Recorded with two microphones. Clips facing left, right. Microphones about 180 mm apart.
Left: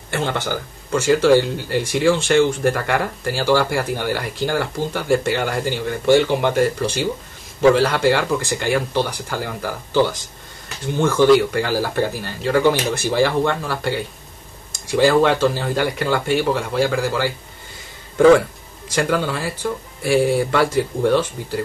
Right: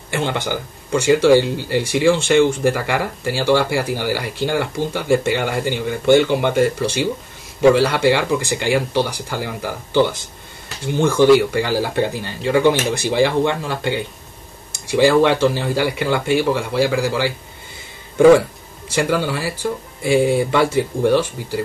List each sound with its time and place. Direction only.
0.1 s speech: 15° right (ahead or behind)